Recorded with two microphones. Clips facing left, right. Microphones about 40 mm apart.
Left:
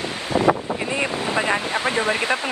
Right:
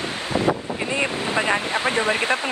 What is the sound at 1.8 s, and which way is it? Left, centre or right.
Speech, right.